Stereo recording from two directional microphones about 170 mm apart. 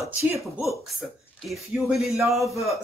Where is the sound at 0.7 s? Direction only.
Centre (ahead or behind).